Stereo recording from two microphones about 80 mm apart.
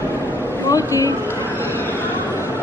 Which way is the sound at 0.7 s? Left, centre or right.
Left.